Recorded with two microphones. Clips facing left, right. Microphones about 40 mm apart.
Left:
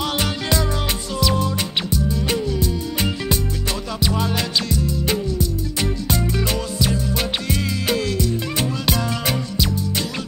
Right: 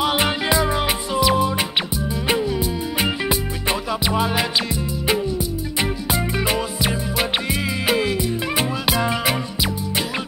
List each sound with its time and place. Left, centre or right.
0.0 s music: centre